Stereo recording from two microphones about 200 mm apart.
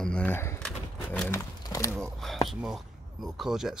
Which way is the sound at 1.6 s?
15° left (ahead or behind).